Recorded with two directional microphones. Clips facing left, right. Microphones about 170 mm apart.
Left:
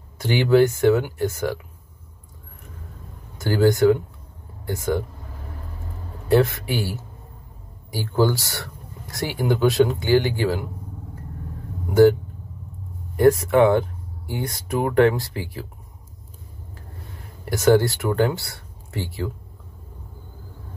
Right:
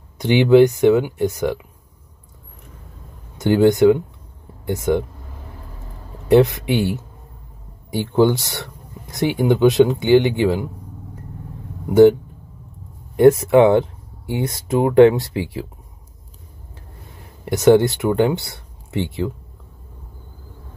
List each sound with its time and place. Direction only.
0.2 s speech: 20° right (ahead or behind)
3.3 s speech: 20° right (ahead or behind)
6.2 s speech: 20° right (ahead or behind)
11.9 s speech: 20° right (ahead or behind)
17.5 s speech: 20° right (ahead or behind)